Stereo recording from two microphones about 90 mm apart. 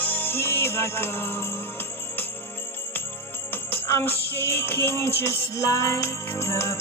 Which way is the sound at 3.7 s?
25° left (ahead or behind).